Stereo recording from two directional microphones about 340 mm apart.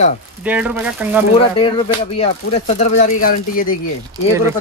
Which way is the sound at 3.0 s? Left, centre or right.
Left.